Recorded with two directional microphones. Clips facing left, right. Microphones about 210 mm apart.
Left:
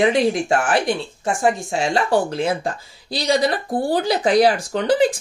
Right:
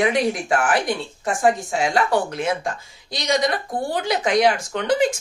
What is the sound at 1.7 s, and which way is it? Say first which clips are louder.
A woman's voice: left 1 dB; 30° left (ahead or behind).